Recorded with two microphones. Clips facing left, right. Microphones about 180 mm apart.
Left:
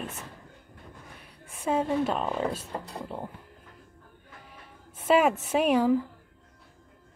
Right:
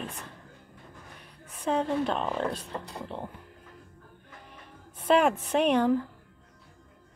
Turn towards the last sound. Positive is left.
turn(degrees=5)  # may be behind; listen again after turning